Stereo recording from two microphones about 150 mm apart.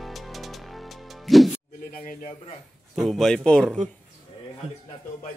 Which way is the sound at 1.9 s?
70° left (ahead or behind).